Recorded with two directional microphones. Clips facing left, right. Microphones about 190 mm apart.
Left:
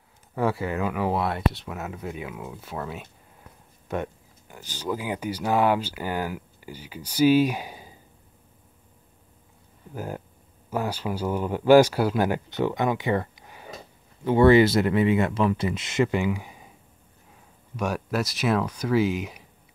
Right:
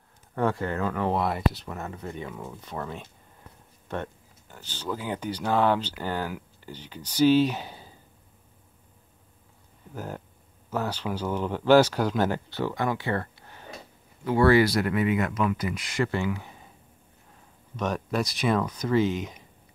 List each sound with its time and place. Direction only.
0.3 s speech: 5° left (ahead or behind)
9.9 s speech: 10° left (ahead or behind)
17.7 s speech: 10° left (ahead or behind)